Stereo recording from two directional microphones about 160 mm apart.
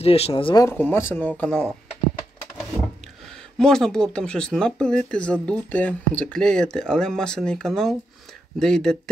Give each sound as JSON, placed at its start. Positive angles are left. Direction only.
{"t": 0.0, "sound": "speech", "side_deg": 40}
{"t": 0.7, "sound": "speech", "side_deg": 15}
{"t": 3.5, "sound": "speech", "side_deg": 5}